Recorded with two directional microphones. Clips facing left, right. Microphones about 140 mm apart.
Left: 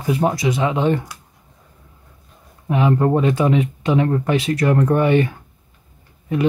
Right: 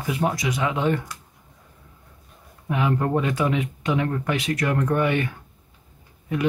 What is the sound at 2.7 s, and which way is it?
Speech, 30° left (ahead or behind).